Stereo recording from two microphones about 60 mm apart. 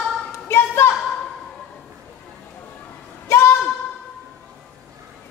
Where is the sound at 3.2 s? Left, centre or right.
Left.